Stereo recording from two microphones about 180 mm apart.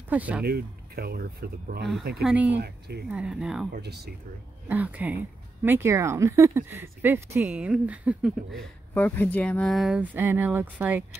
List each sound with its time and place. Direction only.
0.1 s speech: 10° right (ahead or behind)
0.5 s speech: 60° right (ahead or behind)
2.2 s speech: 10° right (ahead or behind)
2.5 s speech: 65° right (ahead or behind)
3.1 s speech: 5° right (ahead or behind)
3.7 s speech: 65° right (ahead or behind)
4.6 s speech: 10° right (ahead or behind)
8.5 s speech: 10° left (ahead or behind); by 11.1 s 10° right (ahead or behind)